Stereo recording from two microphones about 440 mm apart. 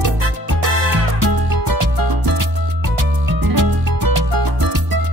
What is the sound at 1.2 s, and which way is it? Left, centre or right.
Music, right.